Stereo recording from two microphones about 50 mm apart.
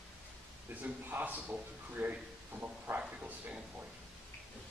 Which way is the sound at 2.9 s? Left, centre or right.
Right.